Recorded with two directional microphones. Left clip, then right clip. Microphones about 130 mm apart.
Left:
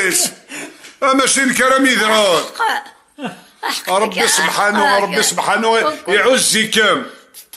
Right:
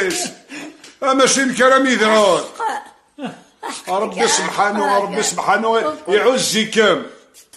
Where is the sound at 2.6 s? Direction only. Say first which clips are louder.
Left 5 dB; 20° right (ahead or behind).